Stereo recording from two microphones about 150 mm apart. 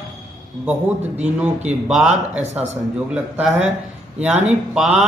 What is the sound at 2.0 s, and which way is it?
Speech, 50° right (ahead or behind).